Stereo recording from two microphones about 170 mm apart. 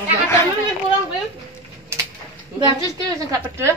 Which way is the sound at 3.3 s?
15° right (ahead or behind).